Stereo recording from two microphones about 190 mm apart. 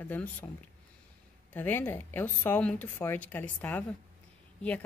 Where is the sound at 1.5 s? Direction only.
10° left (ahead or behind).